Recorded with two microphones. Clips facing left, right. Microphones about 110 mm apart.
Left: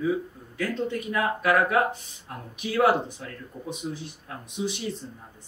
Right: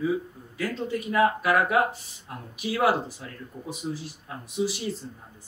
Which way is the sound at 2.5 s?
5° right (ahead or behind).